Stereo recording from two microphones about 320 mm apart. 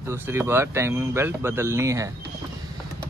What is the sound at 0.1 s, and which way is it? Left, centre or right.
Speech, centre.